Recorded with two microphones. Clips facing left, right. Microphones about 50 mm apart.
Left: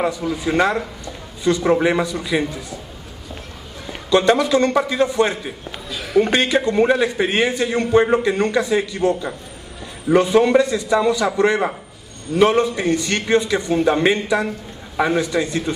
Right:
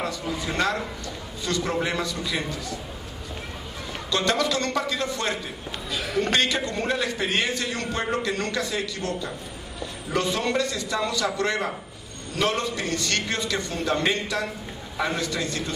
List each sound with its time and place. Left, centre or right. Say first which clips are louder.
0.4 s a man's voice: left 7 dB; centre
4.1 s a man's voice: left 9 dB; left
5.9 s a sound: left 9 dB; centre
6.2 s a man's voice: left 6 dB; centre